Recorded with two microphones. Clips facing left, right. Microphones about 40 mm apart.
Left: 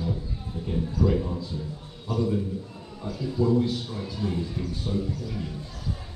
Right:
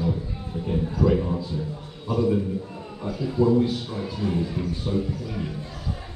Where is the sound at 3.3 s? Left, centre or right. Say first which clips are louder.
Right 3 dB; right.